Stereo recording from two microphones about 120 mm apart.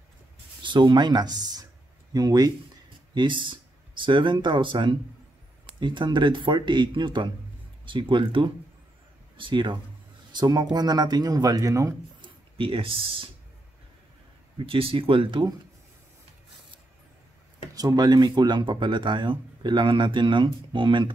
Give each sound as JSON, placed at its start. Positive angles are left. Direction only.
{"t": 0.6, "sound": "speech", "side_deg": -40}
{"t": 3.2, "sound": "speech", "side_deg": -45}
{"t": 12.2, "sound": "speech", "side_deg": -50}
{"t": 14.6, "sound": "speech", "side_deg": -50}
{"t": 17.7, "sound": "speech", "side_deg": -35}